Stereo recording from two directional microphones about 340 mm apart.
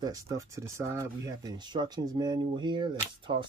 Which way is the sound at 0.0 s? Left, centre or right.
Centre.